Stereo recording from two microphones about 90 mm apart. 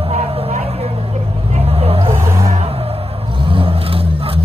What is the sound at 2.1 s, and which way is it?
Vehicle, 35° right (ahead or behind).